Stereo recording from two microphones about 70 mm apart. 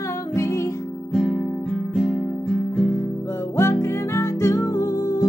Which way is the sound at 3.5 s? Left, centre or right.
Left.